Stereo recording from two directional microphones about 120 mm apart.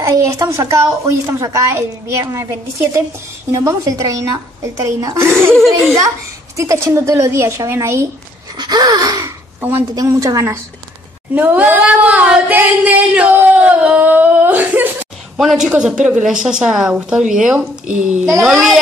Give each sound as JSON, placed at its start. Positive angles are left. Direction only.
{"t": 0.0, "sound": "a woman's voice", "side_deg": -25}
{"t": 3.5, "sound": "a woman's voice", "side_deg": -30}
{"t": 8.5, "sound": "gasp", "side_deg": -35}
{"t": 9.6, "sound": "a woman's voice", "side_deg": -20}
{"t": 11.3, "sound": "a sound", "side_deg": -15}
{"t": 15.3, "sound": "a woman's voice", "side_deg": -5}